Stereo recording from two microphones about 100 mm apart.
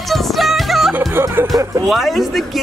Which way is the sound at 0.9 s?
20° right (ahead or behind).